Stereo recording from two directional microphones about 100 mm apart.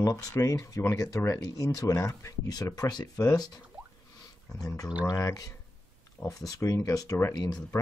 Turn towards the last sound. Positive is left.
turn(degrees=40)  # may be behind; listen again after turning